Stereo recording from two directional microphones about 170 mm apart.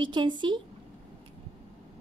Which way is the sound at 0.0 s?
30° right (ahead or behind).